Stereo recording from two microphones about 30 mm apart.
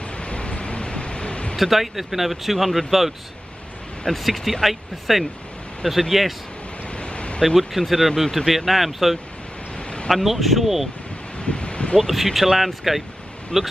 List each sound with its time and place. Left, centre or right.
0.0 s a sound: left
1.6 s speech: centre
4.1 s speech: centre
6.9 s a sound: left
7.4 s speech: centre
9.8 s a sound: left
10.1 s speech: centre
11.3 s rustling leaves: left
12.1 s speech: centre